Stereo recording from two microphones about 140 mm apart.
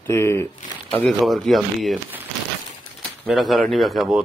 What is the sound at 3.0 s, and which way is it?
Speech, centre (ahead or behind).